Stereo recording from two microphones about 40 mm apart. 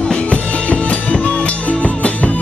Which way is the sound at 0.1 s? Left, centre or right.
Left.